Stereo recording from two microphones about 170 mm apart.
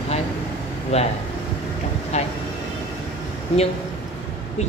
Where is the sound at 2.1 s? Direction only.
40° left (ahead or behind).